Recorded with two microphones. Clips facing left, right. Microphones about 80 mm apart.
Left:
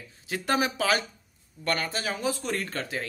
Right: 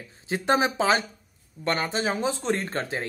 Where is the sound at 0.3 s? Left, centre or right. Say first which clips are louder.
Right 4 dB; right.